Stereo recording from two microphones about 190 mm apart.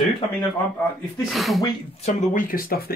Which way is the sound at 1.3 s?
Centre (ahead or behind).